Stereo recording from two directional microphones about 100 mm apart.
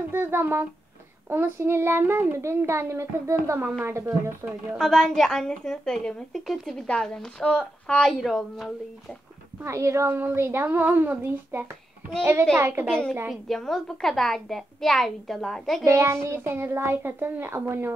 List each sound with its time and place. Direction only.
0.1 s a child's voice: 20° right (ahead or behind)
4.7 s a woman's voice: 5° left (ahead or behind)
9.6 s a child's voice: 30° right (ahead or behind)
12.8 s a woman's voice: 5° left (ahead or behind)
15.8 s a child's voice: 25° right (ahead or behind)